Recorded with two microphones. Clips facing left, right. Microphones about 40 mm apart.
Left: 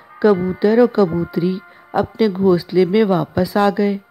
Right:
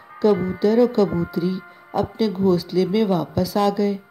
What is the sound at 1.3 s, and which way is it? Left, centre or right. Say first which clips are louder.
Speech: left 4 dB; left.